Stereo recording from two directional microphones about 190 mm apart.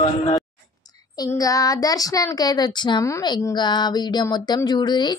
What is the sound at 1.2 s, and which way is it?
Speech, 20° left (ahead or behind).